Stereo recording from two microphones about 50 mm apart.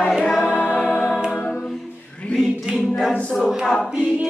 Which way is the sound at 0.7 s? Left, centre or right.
Left.